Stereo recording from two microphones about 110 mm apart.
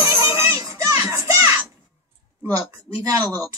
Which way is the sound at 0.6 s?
30° right (ahead or behind).